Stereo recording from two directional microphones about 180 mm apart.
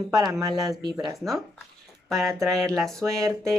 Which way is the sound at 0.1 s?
20° right (ahead or behind).